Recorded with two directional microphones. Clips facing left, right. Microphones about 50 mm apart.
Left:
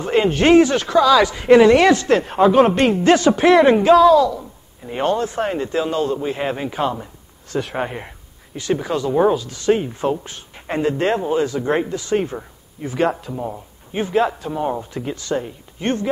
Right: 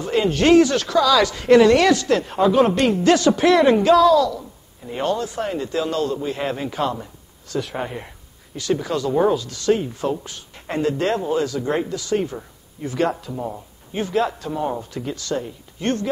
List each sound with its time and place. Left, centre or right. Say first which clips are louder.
0.0 s speech: left 2 dB; left
3.3 s speech: left 3 dB; centre; by 5.8 s left
5.8 s speech: left 2 dB; left
12.8 s speech: left 2 dB; centre